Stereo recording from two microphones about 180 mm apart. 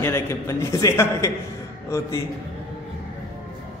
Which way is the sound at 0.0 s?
15° left (ahead or behind).